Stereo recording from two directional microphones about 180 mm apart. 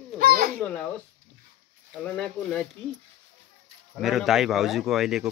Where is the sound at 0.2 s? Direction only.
55° right (ahead or behind).